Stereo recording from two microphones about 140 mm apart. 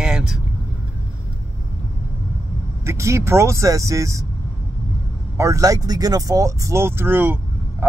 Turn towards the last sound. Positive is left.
turn(degrees=-15)  # may be behind; listen again after turning